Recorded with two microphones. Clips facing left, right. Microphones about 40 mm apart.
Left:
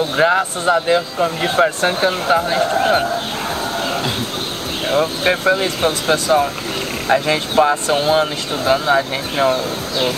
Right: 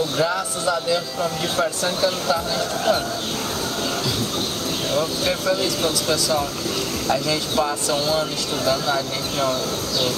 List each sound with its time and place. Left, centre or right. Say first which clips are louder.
0.0 s speech: left 7 dB; left
4.8 s speech: left 7 dB; left